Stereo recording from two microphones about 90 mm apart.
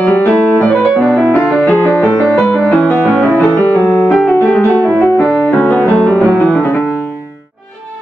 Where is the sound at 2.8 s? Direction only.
10° left (ahead or behind).